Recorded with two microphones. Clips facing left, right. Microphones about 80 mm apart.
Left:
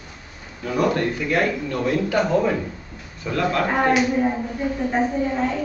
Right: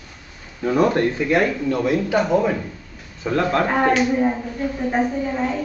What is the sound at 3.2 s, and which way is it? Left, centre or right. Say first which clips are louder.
Speech: right 3 dB; right.